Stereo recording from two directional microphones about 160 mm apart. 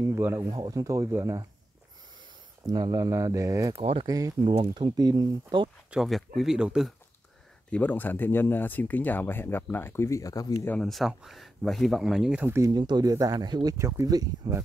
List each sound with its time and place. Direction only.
0.0 s speech: 15° right (ahead or behind)
2.6 s speech: 25° right (ahead or behind)
3.7 s speech: 35° right (ahead or behind)
4.1 s speech: 25° right (ahead or behind)
5.9 s speech: centre (ahead or behind)
7.7 s speech: 10° left (ahead or behind)
10.7 s speech: centre (ahead or behind); by 14.6 s 25° right (ahead or behind)